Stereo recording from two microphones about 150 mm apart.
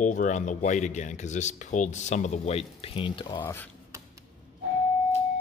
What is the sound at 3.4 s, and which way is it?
Speech, 10° left (ahead or behind).